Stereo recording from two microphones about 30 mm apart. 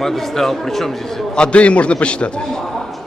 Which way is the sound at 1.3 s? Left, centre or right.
Left.